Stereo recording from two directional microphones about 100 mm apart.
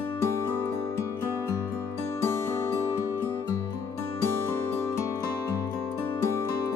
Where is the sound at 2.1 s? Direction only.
25° left (ahead or behind).